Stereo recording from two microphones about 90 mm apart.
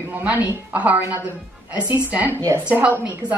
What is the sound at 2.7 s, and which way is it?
Speech, 20° right (ahead or behind).